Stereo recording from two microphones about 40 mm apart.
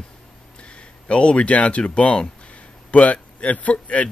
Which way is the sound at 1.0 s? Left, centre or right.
Left.